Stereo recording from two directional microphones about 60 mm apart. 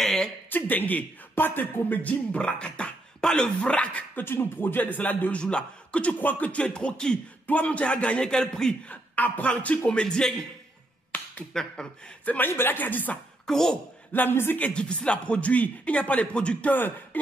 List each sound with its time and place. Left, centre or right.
0.0 s a sound: centre
0.5 s a man's voice: left
4.2 s speech: left; by 8.7 s centre
8.8 s speech: left
11.5 s speech: centre
12.3 s speech: left
13.5 s speech: centre
14.1 s speech: left
14.6 s speech: centre
16.7 s speech: left